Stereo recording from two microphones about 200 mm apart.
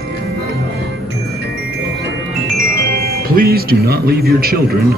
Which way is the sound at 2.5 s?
45° right (ahead or behind).